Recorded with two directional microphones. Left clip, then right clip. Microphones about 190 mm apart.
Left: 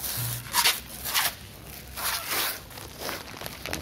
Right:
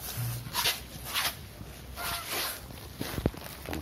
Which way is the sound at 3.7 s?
30° right (ahead or behind).